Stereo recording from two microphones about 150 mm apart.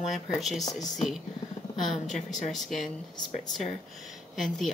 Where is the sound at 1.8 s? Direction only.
Centre (ahead or behind).